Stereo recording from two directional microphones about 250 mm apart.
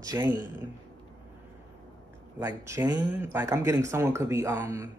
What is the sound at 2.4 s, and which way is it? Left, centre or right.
Speech, centre.